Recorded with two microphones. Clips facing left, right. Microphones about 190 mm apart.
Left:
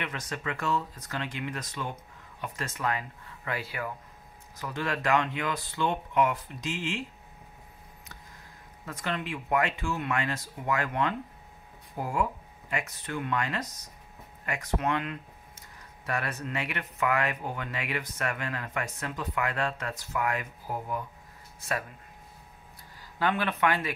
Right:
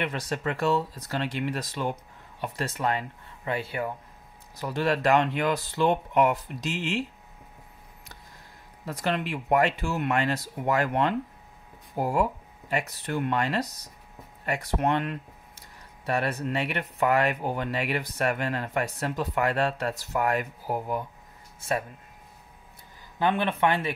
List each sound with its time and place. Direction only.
0.0 s speech: 35° right (ahead or behind)
8.8 s speech: 35° right (ahead or behind)
21.5 s speech: 30° right (ahead or behind)
23.1 s speech: 20° right (ahead or behind)